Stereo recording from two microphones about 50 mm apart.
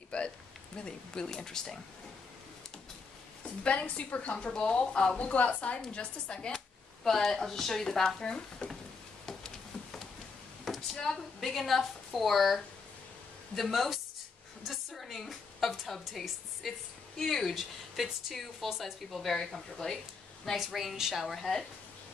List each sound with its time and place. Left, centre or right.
0.1 s a sound: left
0.7 s speech: centre
3.6 s a woman's voice: left
5.3 s a woman's voice: left; by 8.7 s centre
10.6 s a sound: centre
13.6 s a woman's voice: centre
20.5 s speech: centre